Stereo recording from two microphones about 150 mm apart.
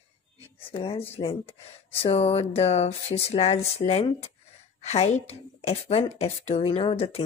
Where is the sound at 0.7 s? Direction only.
40° left (ahead or behind).